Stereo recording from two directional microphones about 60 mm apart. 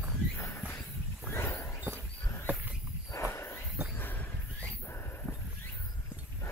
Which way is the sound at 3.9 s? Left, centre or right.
Left.